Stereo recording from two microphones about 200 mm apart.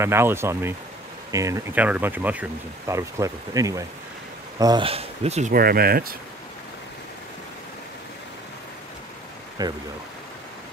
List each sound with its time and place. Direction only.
0.0 s speech: 10° right (ahead or behind); by 6.1 s 50° right (ahead or behind)
9.6 s speech: 20° right (ahead or behind)